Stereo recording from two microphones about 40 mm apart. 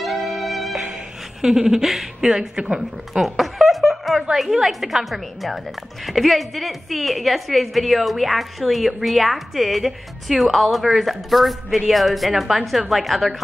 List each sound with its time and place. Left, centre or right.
0.0 s music: centre
1.4 s a sound: centre
2.2 s speech: centre
3.2 s a woman's voice: centre